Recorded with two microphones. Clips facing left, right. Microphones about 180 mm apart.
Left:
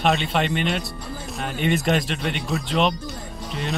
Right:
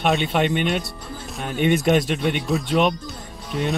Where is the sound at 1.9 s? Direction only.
Centre (ahead or behind).